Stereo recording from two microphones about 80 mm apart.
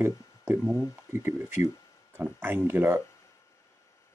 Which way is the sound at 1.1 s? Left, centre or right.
Right.